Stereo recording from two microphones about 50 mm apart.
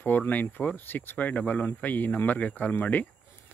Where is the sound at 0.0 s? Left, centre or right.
Left.